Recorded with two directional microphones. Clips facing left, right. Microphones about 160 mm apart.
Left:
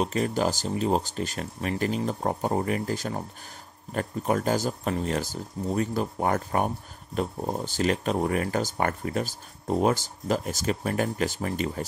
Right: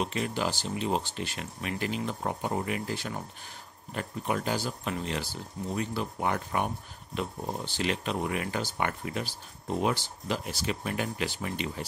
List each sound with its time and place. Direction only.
0.0 s speech: 40° left (ahead or behind)